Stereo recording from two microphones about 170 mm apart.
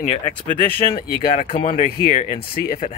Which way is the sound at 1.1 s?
55° left (ahead or behind).